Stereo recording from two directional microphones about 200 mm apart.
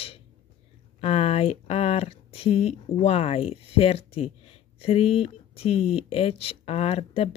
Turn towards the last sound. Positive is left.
turn(degrees=30)  # may be behind; listen again after turning